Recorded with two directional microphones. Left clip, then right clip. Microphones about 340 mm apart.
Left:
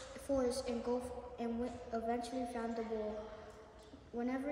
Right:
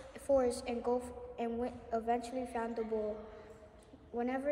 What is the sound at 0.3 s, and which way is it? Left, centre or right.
A woman's voice, centre.